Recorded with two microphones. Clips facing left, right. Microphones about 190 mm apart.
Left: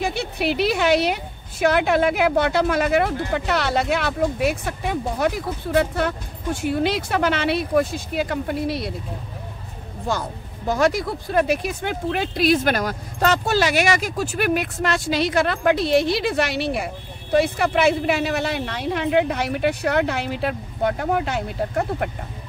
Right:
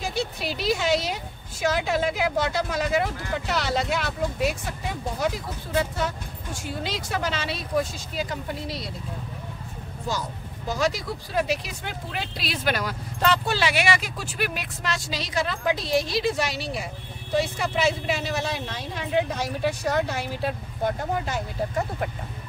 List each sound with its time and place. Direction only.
0.0 s speech: 65° left (ahead or behind)
10.7 s speech: 55° left (ahead or behind)